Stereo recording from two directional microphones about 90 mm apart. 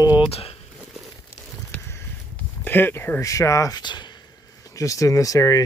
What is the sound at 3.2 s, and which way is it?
Speech, 35° left (ahead or behind).